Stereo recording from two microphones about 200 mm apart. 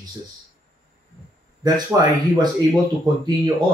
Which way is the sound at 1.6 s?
20° right (ahead or behind).